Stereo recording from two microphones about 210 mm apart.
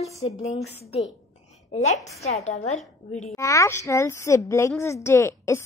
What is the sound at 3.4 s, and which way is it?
A woman's voice, 15° left (ahead or behind).